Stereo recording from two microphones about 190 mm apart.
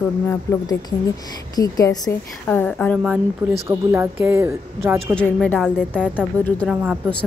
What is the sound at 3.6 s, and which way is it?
A woman's voice, 15° right (ahead or behind).